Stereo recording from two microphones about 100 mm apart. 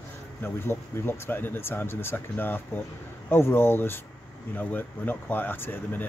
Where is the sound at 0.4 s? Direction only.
25° left (ahead or behind).